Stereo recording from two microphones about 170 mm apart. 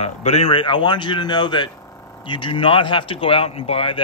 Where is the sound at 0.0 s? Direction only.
40° left (ahead or behind).